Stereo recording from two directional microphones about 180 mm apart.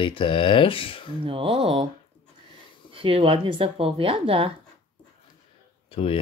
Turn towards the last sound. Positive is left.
turn(degrees=30)  # may be behind; listen again after turning